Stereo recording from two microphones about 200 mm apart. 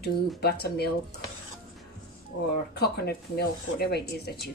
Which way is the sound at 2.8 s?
50° left (ahead or behind).